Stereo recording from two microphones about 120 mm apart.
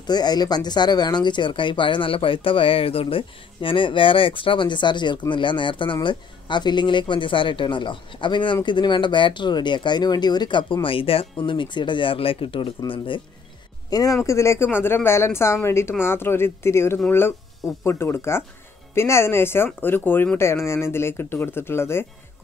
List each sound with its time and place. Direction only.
0.0 s speech: 35° left (ahead or behind)
13.8 s speech: 30° left (ahead or behind)